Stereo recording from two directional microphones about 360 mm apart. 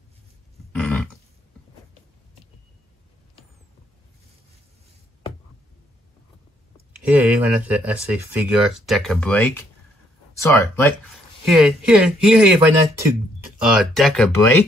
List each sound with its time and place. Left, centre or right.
0.7 s a sound: centre
7.0 s speech: centre
13.6 s speech: centre